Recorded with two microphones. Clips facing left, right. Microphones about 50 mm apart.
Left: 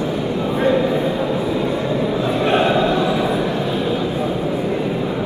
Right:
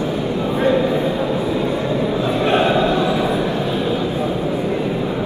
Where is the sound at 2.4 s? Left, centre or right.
Centre.